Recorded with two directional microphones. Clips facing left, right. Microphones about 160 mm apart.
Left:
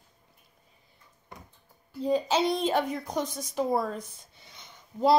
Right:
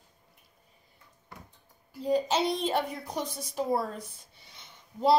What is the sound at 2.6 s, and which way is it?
Speech, 45° left (ahead or behind).